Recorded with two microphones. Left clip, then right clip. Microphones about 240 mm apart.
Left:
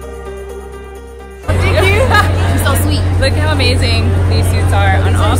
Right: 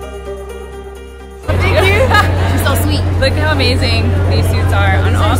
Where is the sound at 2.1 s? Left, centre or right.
Centre.